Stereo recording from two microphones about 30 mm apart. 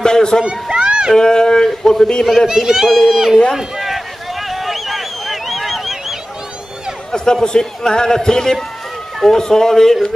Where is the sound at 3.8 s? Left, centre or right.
Centre.